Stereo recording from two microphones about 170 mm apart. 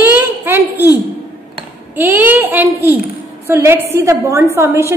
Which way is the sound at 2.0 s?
10° right (ahead or behind).